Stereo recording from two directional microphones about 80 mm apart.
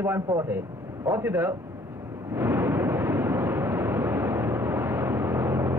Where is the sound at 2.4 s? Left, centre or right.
Right.